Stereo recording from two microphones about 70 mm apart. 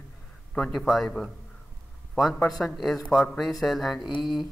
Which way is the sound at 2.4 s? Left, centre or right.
Centre.